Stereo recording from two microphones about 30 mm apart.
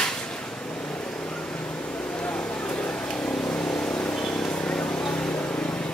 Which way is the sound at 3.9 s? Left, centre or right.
Left.